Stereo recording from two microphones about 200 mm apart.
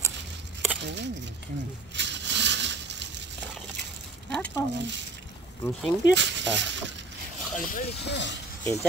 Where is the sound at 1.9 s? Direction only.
60° right (ahead or behind).